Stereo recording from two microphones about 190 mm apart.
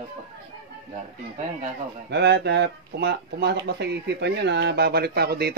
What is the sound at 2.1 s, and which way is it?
Speech, 60° right (ahead or behind).